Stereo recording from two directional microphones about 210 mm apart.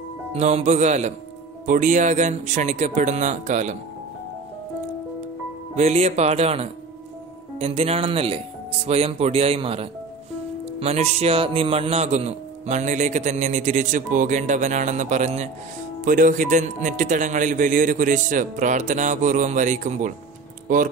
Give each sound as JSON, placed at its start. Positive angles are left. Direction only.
{"t": 0.3, "sound": "a man's voice", "side_deg": -30}
{"t": 5.8, "sound": "a man's voice", "side_deg": -30}